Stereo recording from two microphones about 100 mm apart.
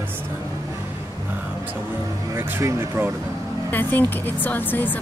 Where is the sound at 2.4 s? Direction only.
25° right (ahead or behind).